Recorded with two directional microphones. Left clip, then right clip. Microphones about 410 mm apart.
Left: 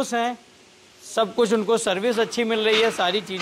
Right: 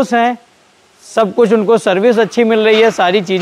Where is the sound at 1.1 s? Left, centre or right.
Centre.